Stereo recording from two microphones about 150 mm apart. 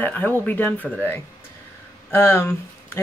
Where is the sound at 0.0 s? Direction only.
10° left (ahead or behind).